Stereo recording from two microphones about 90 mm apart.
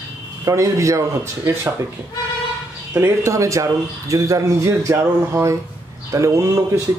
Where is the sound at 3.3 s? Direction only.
35° right (ahead or behind).